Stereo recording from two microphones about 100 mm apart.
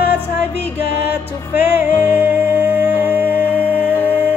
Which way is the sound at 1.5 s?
20° right (ahead or behind).